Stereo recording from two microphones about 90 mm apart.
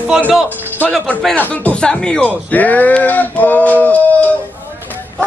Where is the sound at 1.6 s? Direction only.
10° left (ahead or behind).